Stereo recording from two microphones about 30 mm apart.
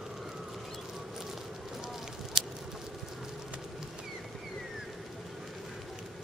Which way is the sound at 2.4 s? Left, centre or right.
Centre.